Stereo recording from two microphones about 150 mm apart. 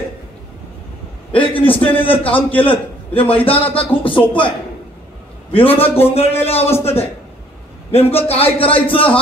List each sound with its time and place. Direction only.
1.3 s a man's voice: 35° left (ahead or behind)